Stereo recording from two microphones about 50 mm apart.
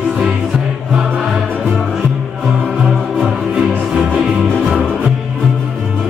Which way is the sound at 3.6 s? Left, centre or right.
Centre.